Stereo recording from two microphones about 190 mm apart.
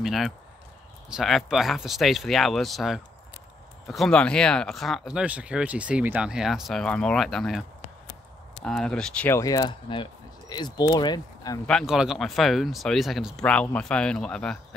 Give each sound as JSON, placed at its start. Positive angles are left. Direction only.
{"t": 0.0, "sound": "speech", "side_deg": 0}
{"t": 8.6, "sound": "speech", "side_deg": 5}
{"t": 9.4, "sound": "speech", "side_deg": 20}
{"t": 11.6, "sound": "speech", "side_deg": 0}